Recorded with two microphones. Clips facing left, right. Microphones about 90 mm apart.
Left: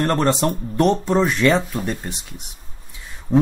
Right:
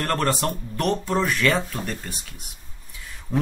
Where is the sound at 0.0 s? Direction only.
25° left (ahead or behind).